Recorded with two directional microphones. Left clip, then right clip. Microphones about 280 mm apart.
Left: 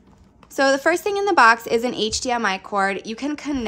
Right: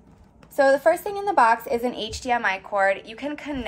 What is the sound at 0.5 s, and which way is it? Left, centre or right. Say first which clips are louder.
A woman's voice: even; left.